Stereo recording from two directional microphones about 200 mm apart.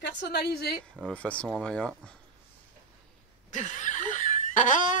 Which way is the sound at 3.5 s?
35° left (ahead or behind).